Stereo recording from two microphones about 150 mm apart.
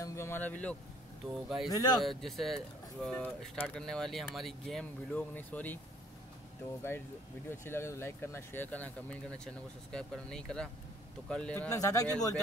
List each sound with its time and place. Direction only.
0.0 s speech: 20° left (ahead or behind)
1.2 s speech: centre (ahead or behind)
1.7 s speech: 25° left (ahead or behind)
2.0 s speech: centre (ahead or behind)
7.4 s speech: 15° left (ahead or behind)
11.7 s speech: 20° left (ahead or behind)